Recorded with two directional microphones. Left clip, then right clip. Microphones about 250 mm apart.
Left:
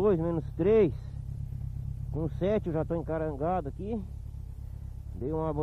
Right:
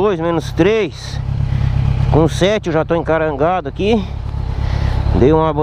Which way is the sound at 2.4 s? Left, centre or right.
Centre.